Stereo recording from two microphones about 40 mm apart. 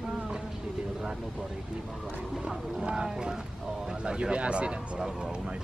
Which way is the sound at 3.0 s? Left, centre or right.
Centre.